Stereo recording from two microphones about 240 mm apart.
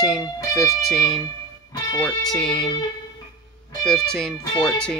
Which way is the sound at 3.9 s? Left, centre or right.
Centre.